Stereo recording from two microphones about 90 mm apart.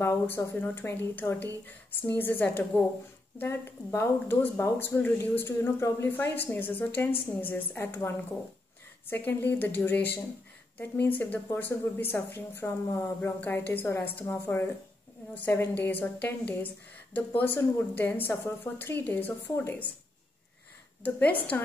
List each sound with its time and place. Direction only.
0.6 s speech: 25° left (ahead or behind)
21.0 s speech: 20° left (ahead or behind)